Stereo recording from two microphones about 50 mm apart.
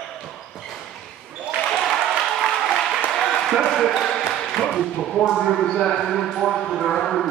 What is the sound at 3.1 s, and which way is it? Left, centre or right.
Basketball bounce, centre.